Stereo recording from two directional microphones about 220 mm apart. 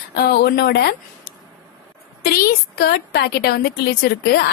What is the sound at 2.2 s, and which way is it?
A woman's voice, 45° left (ahead or behind).